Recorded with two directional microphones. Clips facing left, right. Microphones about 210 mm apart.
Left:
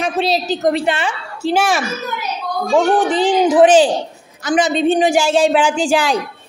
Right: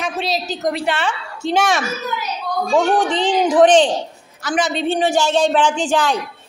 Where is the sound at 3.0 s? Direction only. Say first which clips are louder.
Left 3 dB; 5° left (ahead or behind).